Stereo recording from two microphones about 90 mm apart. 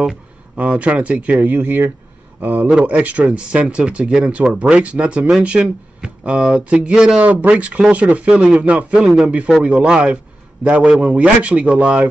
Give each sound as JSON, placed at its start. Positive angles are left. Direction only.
{"t": 0.6, "sound": "speech", "side_deg": -15}
{"t": 9.0, "sound": "a man's voice", "side_deg": 0}
{"t": 9.6, "sound": "a man's voice", "side_deg": -10}